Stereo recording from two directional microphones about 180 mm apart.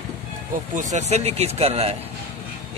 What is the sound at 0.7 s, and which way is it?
Speech, 45° right (ahead or behind).